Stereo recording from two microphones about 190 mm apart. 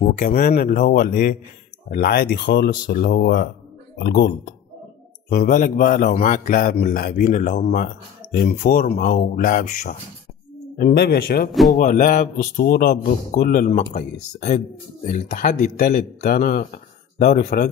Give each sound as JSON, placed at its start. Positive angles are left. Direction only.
{"t": 0.2, "sound": "a man's voice", "side_deg": 50}
{"t": 11.5, "sound": "music", "side_deg": 0}
{"t": 11.8, "sound": "a man's voice", "side_deg": 45}